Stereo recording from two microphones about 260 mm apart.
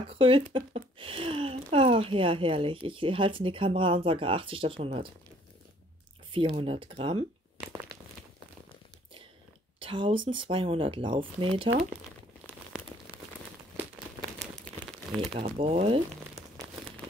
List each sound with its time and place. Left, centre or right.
0.1 s speech: centre
6.3 s speech: centre
9.8 s speech: centre
14.4 s crumpling: centre
15.3 s speech: right
16.3 s crumpling: centre